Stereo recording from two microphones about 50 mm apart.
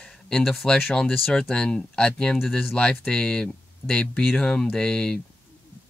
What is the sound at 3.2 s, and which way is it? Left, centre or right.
Speech, centre.